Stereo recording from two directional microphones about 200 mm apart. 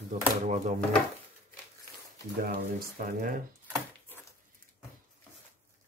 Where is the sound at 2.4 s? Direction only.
45° right (ahead or behind).